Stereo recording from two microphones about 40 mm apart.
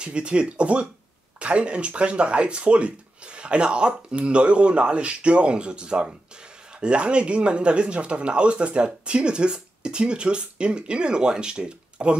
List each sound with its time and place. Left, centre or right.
0.0 s speech: right